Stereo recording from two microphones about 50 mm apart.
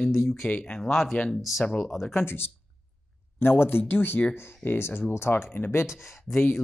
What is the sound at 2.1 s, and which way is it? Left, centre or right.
Speech, left.